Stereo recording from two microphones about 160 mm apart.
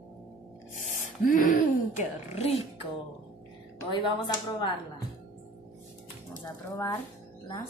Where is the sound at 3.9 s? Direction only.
30° left (ahead or behind).